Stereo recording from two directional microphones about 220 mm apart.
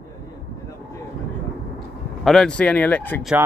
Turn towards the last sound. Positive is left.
turn(degrees=5)  # may be behind; listen again after turning